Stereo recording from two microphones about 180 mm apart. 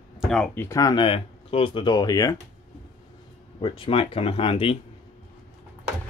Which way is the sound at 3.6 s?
30° left (ahead or behind).